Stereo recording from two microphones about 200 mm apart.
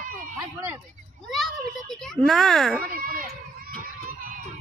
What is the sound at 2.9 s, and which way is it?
Children playing, 45° right (ahead or behind).